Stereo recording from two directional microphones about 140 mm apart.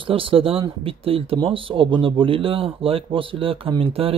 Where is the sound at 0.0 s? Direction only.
40° right (ahead or behind).